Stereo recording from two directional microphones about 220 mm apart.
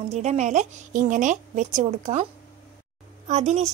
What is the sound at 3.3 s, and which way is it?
Speech, 30° right (ahead or behind).